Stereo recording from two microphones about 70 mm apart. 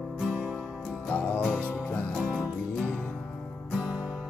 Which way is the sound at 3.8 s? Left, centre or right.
Centre.